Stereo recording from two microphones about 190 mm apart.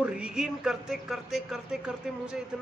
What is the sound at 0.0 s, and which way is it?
Speech, 5° right (ahead or behind).